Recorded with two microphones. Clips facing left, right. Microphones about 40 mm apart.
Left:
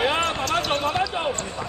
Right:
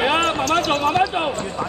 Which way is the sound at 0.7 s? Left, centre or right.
Centre.